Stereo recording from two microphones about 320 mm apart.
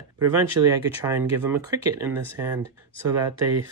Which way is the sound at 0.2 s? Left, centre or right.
Right.